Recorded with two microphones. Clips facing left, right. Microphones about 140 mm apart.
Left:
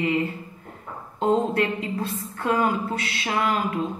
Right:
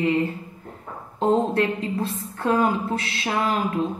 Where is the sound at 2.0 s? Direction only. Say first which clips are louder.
Right 2 dB; 35° right (ahead or behind).